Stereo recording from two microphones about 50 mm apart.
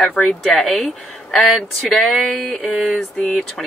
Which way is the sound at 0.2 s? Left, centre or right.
Centre.